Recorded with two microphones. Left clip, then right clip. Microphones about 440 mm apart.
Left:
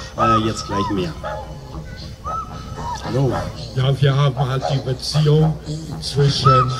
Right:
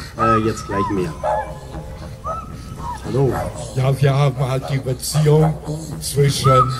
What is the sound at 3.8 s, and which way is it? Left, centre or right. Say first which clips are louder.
Speech: right 1 dB; centre.